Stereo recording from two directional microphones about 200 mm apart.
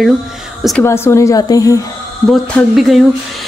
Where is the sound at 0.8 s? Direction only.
15° left (ahead or behind).